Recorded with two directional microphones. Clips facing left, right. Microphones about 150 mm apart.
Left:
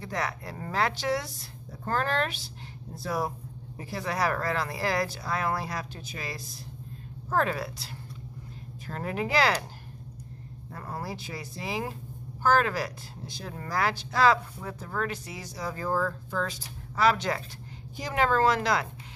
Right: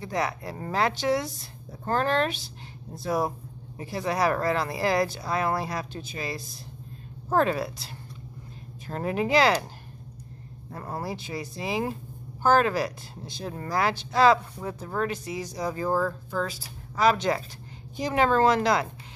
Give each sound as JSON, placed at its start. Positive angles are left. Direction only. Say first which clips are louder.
{"t": 0.0, "sound": "speech", "louder": "right 4 dB", "side_deg": -15}
{"t": 10.7, "sound": "speech", "louder": "right 3 dB", "side_deg": -25}